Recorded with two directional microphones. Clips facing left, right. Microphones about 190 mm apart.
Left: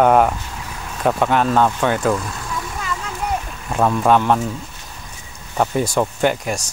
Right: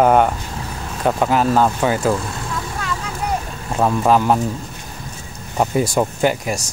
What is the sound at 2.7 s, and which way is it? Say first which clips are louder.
Vehicle: right 1 dB; centre (ahead or behind).